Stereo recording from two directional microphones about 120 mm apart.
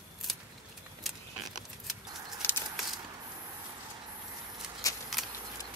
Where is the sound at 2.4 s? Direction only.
20° left (ahead or behind).